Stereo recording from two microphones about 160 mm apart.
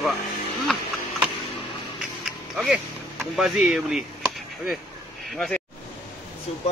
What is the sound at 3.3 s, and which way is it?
Speech, centre (ahead or behind).